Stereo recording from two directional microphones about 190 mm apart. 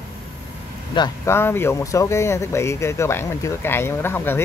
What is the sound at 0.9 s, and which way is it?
Speech, 20° left (ahead or behind).